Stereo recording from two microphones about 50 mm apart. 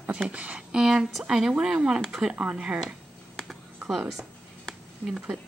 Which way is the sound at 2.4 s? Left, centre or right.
Right.